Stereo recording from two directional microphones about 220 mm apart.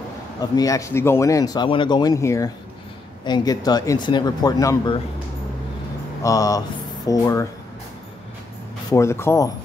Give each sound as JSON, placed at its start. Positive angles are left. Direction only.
{"t": 0.4, "sound": "speech", "side_deg": 15}
{"t": 6.2, "sound": "speech", "side_deg": 15}
{"t": 8.9, "sound": "speech", "side_deg": 10}